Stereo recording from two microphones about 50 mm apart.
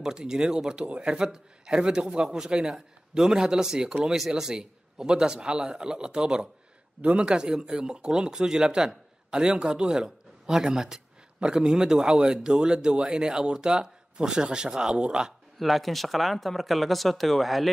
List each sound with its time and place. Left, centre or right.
0.0 s speech: centre
15.6 s speech: centre